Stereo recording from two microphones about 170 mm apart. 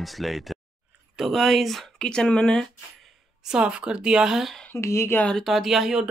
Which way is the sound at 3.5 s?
5° right (ahead or behind).